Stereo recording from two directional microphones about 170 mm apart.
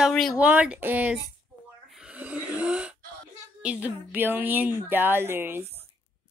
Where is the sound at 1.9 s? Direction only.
5° right (ahead or behind).